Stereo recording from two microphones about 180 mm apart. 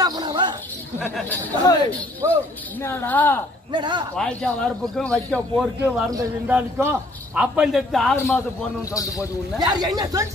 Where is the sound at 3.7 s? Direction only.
25° right (ahead or behind).